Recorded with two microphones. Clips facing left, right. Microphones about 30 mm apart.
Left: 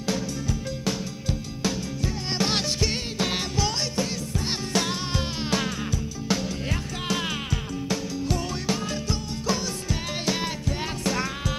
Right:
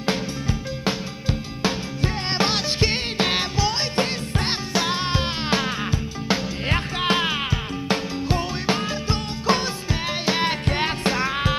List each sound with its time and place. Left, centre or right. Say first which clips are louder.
0.0 s music: right 3 dB; right
3.9 s music: right 4 dB; right
4.7 s music: right 4 dB; right
6.7 s music: right 10 dB; right
10.7 s music: right 6 dB; right
11.1 s music: right 6 dB; right